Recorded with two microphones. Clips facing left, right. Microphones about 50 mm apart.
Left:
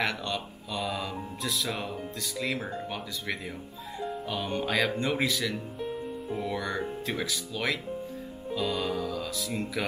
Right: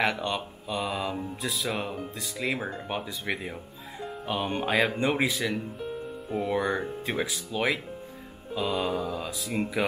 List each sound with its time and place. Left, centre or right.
0.0 s speech: centre